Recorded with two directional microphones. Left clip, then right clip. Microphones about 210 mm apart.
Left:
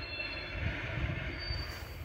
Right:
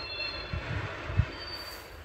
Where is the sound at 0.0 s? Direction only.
5° right (ahead or behind).